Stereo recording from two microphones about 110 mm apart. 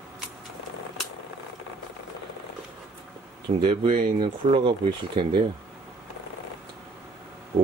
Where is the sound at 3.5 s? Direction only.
45° right (ahead or behind).